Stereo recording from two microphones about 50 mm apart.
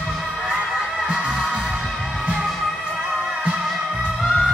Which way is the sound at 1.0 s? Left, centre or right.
Centre.